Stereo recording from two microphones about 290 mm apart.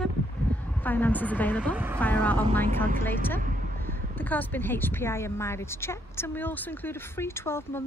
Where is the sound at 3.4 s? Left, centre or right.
Right.